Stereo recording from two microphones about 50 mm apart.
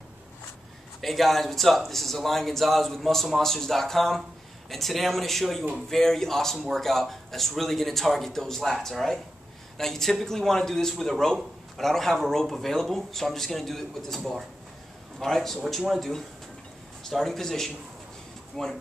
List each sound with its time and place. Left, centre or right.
1.0 s speech: centre